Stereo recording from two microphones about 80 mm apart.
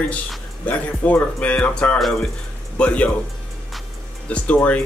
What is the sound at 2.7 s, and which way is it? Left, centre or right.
Speech, centre.